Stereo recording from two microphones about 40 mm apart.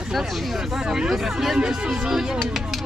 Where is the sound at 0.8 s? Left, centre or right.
Centre.